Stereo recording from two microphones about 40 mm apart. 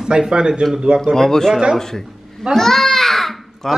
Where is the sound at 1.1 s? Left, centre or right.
Centre.